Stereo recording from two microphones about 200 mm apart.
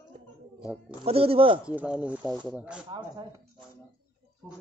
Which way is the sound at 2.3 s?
20° right (ahead or behind).